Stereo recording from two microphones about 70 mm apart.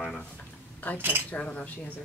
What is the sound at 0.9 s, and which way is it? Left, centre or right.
Speech, left.